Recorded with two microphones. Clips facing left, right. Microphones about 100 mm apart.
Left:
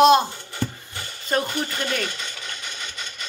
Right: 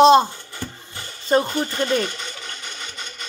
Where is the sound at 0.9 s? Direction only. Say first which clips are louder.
Right 7 dB; 30° right (ahead or behind).